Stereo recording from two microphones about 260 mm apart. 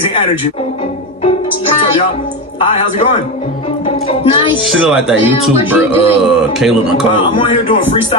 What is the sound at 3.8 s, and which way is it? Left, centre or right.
Music, left.